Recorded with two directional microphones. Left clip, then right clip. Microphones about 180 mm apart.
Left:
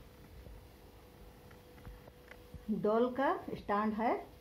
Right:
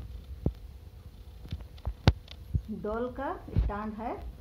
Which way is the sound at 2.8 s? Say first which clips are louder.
Left 3 dB; 25° right (ahead or behind).